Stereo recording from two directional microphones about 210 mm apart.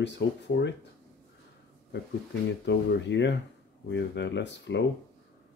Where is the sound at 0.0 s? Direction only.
55° left (ahead or behind).